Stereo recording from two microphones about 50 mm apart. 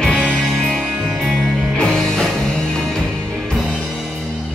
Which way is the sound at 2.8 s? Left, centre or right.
Centre.